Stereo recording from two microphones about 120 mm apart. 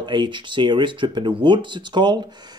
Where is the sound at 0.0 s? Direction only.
40° right (ahead or behind).